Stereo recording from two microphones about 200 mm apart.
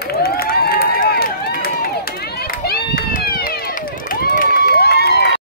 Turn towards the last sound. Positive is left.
turn(degrees=55)  # may be behind; listen again after turning